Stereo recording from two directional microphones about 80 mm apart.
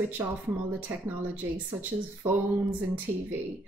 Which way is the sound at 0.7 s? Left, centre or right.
Right.